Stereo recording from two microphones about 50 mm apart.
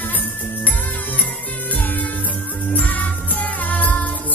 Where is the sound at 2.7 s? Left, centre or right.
Left.